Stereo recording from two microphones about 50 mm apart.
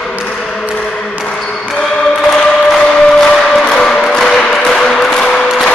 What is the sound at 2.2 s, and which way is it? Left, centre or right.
Music, centre.